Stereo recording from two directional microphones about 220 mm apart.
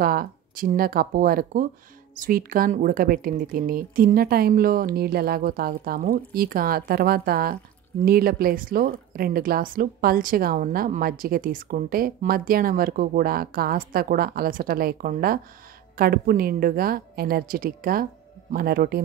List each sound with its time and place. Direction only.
0.0 s a woman's voice: 40° right (ahead or behind)